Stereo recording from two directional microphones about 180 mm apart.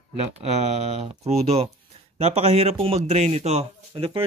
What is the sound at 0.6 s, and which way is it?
Speech, 35° right (ahead or behind).